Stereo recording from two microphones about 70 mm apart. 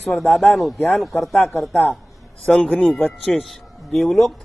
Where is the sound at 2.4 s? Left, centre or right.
Centre.